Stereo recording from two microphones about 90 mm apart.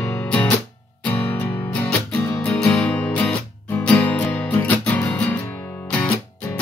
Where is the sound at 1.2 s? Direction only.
20° left (ahead or behind).